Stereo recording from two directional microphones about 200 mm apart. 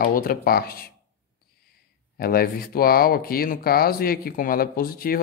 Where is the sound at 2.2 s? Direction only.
50° left (ahead or behind).